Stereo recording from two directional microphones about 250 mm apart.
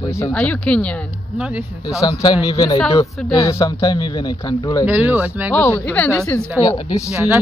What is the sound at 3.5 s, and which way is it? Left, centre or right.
Speech, centre.